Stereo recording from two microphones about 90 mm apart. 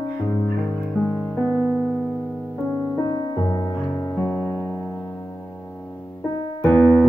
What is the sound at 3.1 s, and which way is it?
Music, 40° left (ahead or behind).